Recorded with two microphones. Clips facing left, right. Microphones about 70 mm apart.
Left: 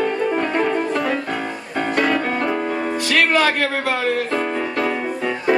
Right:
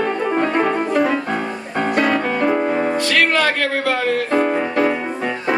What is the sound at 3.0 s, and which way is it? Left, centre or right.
Music, centre.